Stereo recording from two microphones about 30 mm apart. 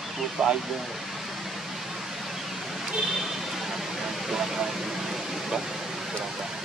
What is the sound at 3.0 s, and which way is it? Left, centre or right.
Vehicle, centre.